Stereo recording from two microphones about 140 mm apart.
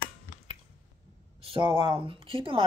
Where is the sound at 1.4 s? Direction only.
40° right (ahead or behind).